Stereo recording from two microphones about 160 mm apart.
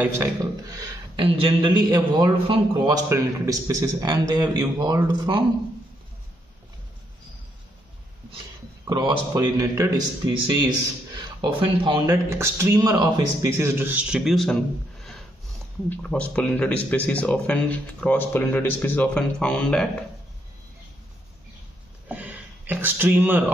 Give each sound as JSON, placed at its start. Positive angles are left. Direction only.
{"t": 0.0, "sound": "a man's voice", "side_deg": -20}
{"t": 8.8, "sound": "a man's voice", "side_deg": -25}
{"t": 12.1, "sound": "a man's voice", "side_deg": -15}
{"t": 22.0, "sound": "a sound", "side_deg": -10}